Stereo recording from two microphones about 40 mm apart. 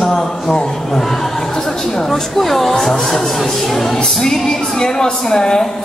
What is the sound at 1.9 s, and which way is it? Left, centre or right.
Speech, centre.